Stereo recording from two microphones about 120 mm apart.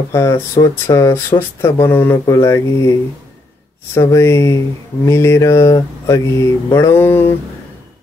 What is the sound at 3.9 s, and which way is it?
Speech, 25° left (ahead or behind).